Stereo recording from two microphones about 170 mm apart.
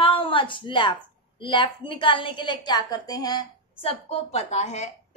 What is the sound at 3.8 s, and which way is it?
A woman's voice, 35° left (ahead or behind).